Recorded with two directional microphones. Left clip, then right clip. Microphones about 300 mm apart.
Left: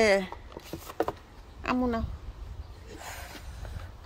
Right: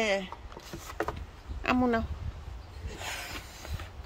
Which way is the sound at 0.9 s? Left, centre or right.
Left.